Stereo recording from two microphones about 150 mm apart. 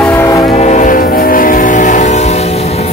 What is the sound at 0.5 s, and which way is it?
Train, 50° left (ahead or behind).